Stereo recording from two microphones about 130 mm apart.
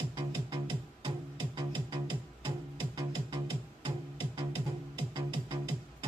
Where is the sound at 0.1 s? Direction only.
40° right (ahead or behind).